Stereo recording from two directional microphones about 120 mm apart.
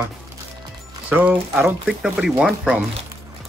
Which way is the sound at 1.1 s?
15° right (ahead or behind).